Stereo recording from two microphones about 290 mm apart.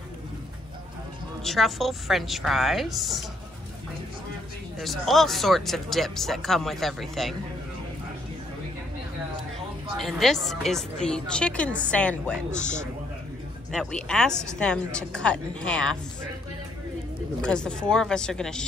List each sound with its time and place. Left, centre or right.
1.4 s speech: centre
4.7 s speech: centre
9.9 s speech: centre
12.5 s a man's voice: left
13.7 s speech: centre
17.4 s speech: centre